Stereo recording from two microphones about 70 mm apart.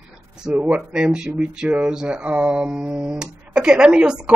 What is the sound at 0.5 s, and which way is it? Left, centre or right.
A man's voice, centre.